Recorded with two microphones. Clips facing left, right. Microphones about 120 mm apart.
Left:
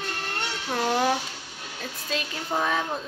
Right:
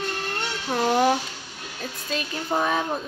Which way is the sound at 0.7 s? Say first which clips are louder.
Right 4 dB; 10° right (ahead or behind).